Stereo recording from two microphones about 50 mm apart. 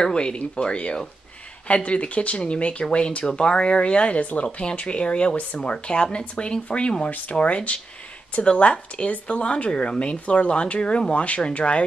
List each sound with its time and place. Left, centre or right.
0.0 s speech: centre